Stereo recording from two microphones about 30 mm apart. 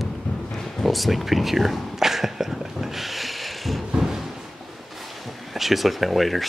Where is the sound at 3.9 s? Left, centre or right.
Centre.